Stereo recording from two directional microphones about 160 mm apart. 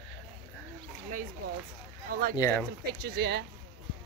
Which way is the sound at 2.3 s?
15° left (ahead or behind).